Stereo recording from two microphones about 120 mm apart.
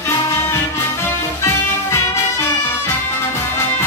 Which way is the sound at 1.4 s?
20° left (ahead or behind).